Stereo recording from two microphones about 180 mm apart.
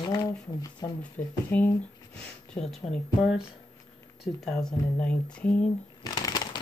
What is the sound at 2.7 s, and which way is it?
Speech, centre (ahead or behind).